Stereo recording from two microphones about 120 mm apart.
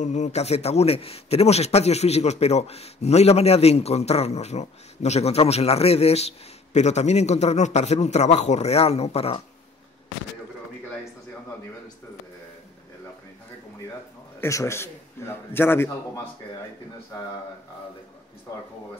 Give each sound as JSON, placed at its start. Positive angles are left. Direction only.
{"t": 0.0, "sound": "a man's voice", "side_deg": 75}
{"t": 14.4, "sound": "a man's voice", "side_deg": 25}